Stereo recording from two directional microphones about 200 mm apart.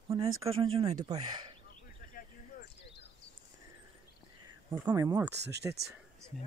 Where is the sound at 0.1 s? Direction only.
20° right (ahead or behind).